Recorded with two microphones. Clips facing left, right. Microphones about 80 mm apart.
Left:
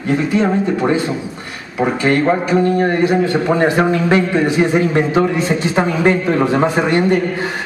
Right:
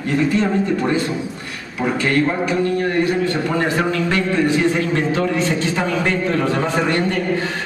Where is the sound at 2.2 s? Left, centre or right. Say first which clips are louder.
Left 5 dB; left.